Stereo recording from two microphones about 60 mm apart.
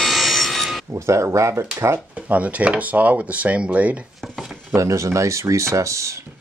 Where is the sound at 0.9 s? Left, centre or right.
Right.